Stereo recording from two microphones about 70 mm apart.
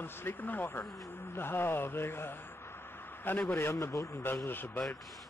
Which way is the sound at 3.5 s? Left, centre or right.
Left.